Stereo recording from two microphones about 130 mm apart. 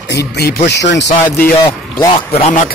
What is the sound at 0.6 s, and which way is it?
Speech, 70° left (ahead or behind).